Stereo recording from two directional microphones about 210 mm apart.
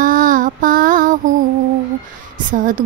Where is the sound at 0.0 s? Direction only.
40° right (ahead or behind).